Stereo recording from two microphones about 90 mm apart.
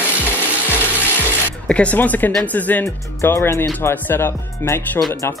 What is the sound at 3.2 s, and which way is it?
Speech, 30° left (ahead or behind).